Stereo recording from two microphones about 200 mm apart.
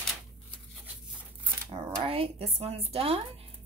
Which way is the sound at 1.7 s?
30° right (ahead or behind).